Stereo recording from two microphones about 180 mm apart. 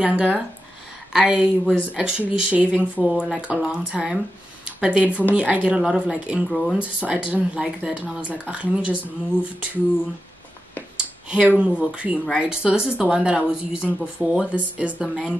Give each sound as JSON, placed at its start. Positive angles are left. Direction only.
{"t": 0.0, "sound": "speech", "side_deg": -5}
{"t": 11.2, "sound": "speech", "side_deg": -5}